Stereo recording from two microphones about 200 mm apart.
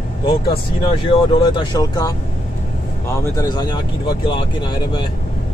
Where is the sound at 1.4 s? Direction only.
20° left (ahead or behind).